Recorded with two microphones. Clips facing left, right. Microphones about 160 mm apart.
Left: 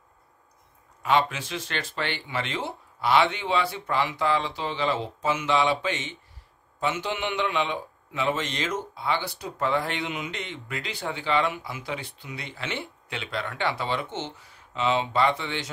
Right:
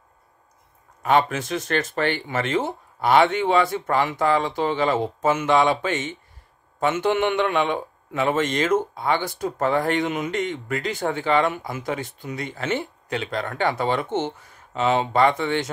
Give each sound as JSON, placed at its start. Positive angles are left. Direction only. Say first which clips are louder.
{"t": 1.0, "sound": "a man's voice", "louder": "right 4 dB", "side_deg": -50}